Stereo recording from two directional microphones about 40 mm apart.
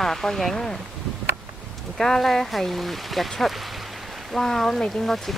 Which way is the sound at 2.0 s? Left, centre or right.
Centre.